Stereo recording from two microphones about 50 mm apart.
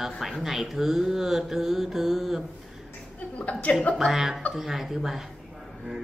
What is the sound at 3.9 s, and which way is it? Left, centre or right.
Speech, centre.